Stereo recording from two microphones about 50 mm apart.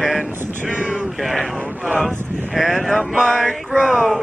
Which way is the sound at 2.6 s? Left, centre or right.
Centre.